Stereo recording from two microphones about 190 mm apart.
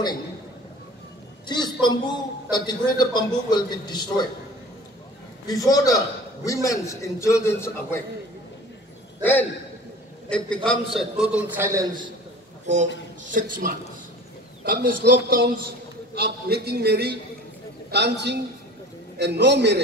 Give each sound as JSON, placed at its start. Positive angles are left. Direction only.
{"t": 1.5, "sound": "a man's voice", "side_deg": 20}
{"t": 5.5, "sound": "a man's voice", "side_deg": 20}
{"t": 9.2, "sound": "a man's voice", "side_deg": 10}
{"t": 13.2, "sound": "a man's voice", "side_deg": -45}